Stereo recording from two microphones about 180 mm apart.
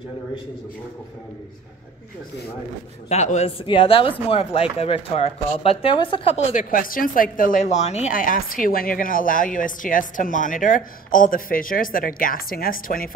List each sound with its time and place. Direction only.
3.1 s speech: 40° left (ahead or behind)
6.5 s a woman's voice: 45° left (ahead or behind)